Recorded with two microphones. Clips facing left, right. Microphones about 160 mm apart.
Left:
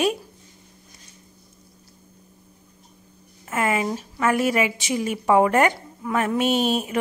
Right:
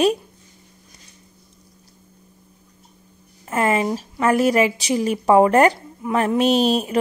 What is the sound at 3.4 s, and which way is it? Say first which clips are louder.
A woman's voice: right 4 dB; 35° right (ahead or behind).